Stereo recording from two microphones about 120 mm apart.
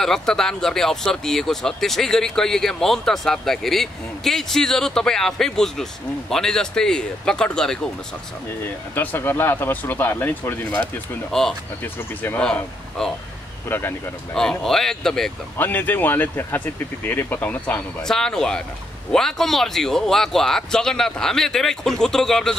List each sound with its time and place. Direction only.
0.0 s speech: 5° left (ahead or behind)
8.9 s speech: 15° left (ahead or behind)
13.7 s speech: 20° left (ahead or behind)
14.3 s speech: 5° left (ahead or behind)
15.5 s speech: 15° left (ahead or behind)
18.0 s speech: 5° left (ahead or behind)